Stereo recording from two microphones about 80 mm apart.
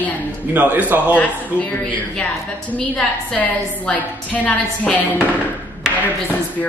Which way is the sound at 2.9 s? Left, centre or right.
Centre.